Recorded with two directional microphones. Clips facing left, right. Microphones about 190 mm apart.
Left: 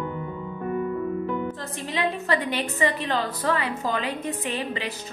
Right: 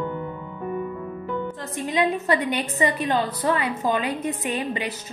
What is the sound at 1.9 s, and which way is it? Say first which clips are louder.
A woman's voice: right 3 dB; 15° right (ahead or behind).